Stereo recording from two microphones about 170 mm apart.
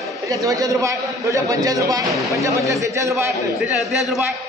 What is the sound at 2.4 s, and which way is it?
Speech, 20° right (ahead or behind).